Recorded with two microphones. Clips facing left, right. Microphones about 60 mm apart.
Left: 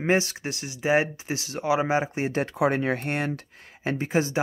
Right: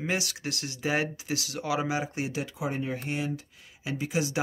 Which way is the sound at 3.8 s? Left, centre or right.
Left.